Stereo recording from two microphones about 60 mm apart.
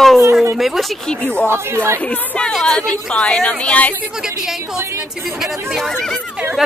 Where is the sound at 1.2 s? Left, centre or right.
Left.